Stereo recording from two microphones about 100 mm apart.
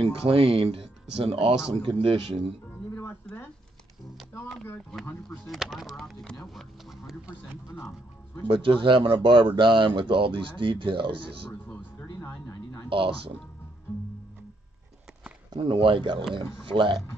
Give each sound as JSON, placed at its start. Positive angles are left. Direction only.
{"t": 0.0, "sound": "speech", "side_deg": -65}
{"t": 2.9, "sound": "music", "side_deg": 30}
{"t": 5.0, "sound": "speech", "side_deg": 15}
{"t": 5.5, "sound": "speech", "side_deg": 0}
{"t": 8.5, "sound": "speech", "side_deg": -60}
{"t": 12.2, "sound": "a sound", "side_deg": 30}
{"t": 15.5, "sound": "speech", "side_deg": -60}